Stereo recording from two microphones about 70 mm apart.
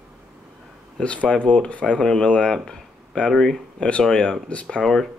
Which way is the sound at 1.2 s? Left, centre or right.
Centre.